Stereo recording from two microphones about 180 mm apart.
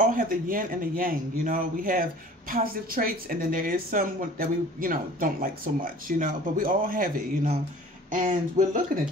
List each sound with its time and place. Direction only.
0.0 s speech: 50° right (ahead or behind)
8.1 s speech: 45° right (ahead or behind)